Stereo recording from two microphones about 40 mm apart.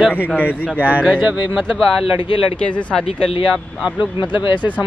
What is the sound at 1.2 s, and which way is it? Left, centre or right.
Speech, right.